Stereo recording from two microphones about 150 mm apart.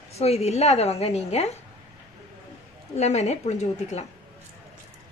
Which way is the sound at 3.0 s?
45° left (ahead or behind).